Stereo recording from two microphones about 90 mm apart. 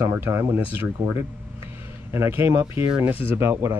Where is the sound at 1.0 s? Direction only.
15° right (ahead or behind).